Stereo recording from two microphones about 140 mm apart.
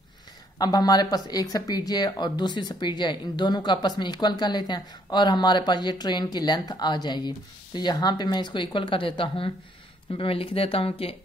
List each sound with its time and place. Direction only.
0.6 s speech: 30° left (ahead or behind)